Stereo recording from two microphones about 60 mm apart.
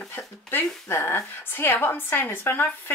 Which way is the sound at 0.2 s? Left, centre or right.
Left.